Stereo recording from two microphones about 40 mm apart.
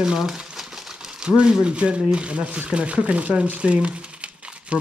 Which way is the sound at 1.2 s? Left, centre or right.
Right.